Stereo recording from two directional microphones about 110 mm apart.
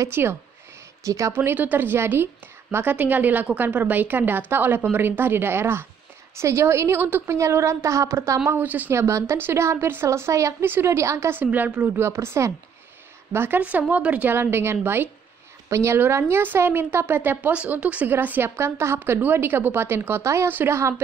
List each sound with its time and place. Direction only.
0.0 s a woman's voice: 20° right (ahead or behind)
1.3 s a woman's voice: 20° right (ahead or behind)